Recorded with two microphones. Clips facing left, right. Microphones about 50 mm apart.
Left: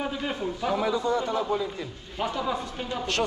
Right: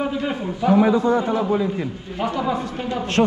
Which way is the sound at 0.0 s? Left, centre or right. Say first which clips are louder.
Right 6 dB; right.